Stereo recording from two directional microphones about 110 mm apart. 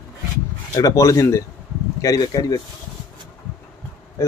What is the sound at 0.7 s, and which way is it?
Speech, 30° left (ahead or behind).